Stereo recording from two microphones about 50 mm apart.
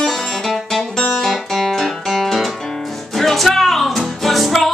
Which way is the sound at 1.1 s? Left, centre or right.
Centre.